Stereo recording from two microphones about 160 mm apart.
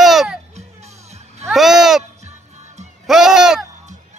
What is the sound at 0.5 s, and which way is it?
Music, 45° right (ahead or behind).